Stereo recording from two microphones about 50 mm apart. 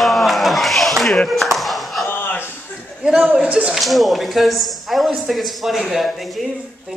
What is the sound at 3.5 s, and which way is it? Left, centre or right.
Speech, centre.